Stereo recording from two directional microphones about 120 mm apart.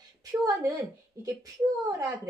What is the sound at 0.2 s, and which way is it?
A woman's voice, 30° right (ahead or behind).